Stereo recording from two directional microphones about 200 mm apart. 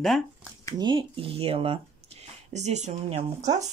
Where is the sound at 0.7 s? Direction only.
25° right (ahead or behind).